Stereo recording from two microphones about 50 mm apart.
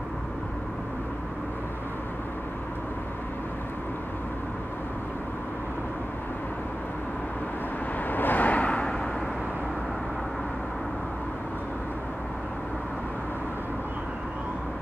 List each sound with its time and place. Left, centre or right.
8.1 s vehicle: left